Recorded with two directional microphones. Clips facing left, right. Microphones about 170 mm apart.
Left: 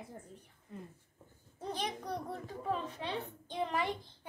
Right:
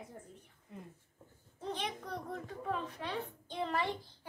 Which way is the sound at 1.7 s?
35° left (ahead or behind).